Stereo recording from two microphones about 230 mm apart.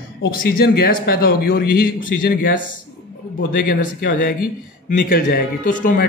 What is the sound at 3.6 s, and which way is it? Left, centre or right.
Speech, left.